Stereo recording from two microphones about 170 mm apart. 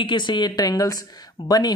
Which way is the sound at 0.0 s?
25° left (ahead or behind).